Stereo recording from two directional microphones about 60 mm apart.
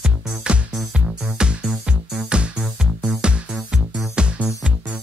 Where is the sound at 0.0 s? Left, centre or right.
Centre.